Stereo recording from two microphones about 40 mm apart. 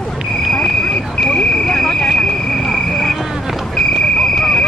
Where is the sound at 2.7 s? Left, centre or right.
Centre.